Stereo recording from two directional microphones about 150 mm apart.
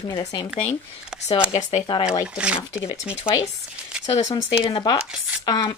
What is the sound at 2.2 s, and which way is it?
Speech, 5° right (ahead or behind).